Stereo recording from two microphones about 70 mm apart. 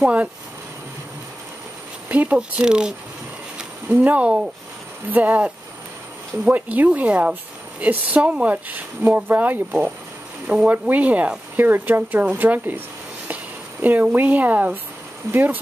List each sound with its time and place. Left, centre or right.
0.0 s speech: centre
2.0 s speech: right
3.9 s speech: right
10.4 s speech: centre